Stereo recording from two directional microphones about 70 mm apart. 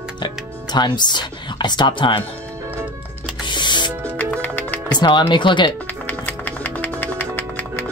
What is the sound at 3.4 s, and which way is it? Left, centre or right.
Music, left.